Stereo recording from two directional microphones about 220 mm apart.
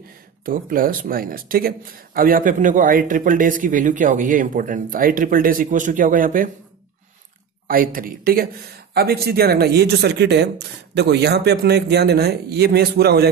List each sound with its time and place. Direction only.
0.5 s speech: 40° right (ahead or behind)
7.6 s speech: 40° right (ahead or behind)